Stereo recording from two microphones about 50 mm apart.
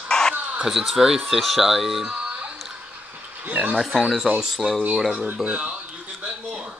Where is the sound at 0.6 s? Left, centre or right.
Centre.